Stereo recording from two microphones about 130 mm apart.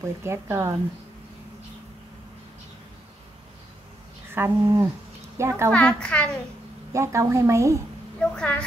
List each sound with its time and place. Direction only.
0.0 s a woman's voice: 20° right (ahead or behind)
4.3 s a woman's voice: 20° right (ahead or behind)
5.7 s a child's voice: 10° left (ahead or behind)
6.9 s a woman's voice: 25° right (ahead or behind)
8.2 s a child's voice: 10° left (ahead or behind)